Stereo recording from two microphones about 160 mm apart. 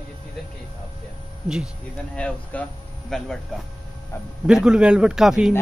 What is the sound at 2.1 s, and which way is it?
A man's voice, 5° left (ahead or behind).